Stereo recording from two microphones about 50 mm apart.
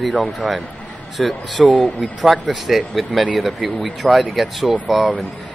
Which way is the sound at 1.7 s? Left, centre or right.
Left.